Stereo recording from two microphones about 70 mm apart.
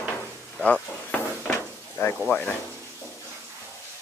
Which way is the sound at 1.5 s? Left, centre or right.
Left.